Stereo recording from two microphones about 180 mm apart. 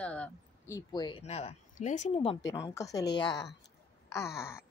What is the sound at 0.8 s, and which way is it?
Speech, 25° left (ahead or behind).